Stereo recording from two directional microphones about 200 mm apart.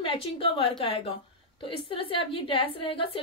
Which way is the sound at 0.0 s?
25° left (ahead or behind).